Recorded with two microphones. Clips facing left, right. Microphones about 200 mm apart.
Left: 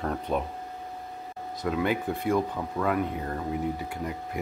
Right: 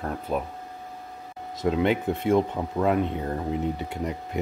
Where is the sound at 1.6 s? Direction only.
25° right (ahead or behind).